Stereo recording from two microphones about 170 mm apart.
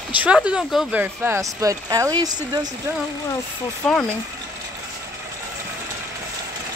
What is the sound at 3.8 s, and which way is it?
Speech, 5° left (ahead or behind).